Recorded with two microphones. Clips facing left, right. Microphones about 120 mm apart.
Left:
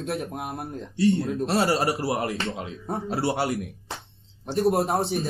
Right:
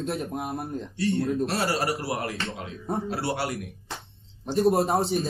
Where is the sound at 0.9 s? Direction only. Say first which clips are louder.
Left 3 dB; 25° left (ahead or behind).